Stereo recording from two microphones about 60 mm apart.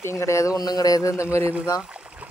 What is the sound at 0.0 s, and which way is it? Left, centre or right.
Speech, left.